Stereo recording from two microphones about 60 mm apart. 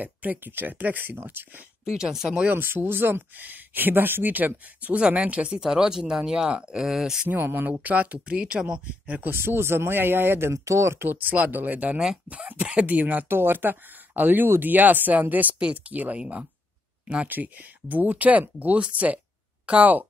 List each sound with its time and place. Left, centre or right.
0.0 s speech: right
1.9 s speech: centre
2.5 s speech: right; by 7.2 s centre
7.2 s speech: right
9.3 s speech: right
10.5 s speech: right
11.1 s speech: right